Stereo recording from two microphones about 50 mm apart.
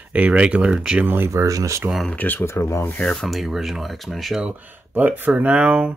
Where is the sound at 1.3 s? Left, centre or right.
Right.